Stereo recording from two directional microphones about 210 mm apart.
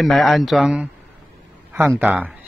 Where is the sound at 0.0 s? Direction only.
Centre (ahead or behind).